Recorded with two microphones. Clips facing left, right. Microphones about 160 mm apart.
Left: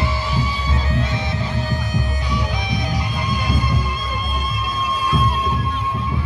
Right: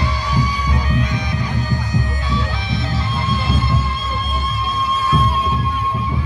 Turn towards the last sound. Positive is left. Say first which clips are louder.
# right 2 dB
turn(degrees=10)  # may be behind; listen again after turning